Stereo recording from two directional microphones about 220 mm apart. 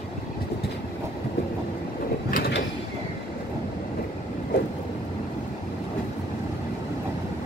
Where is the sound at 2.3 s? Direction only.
45° left (ahead or behind).